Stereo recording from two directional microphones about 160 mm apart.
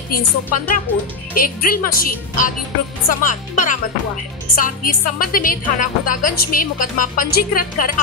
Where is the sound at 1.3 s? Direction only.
65° left (ahead or behind).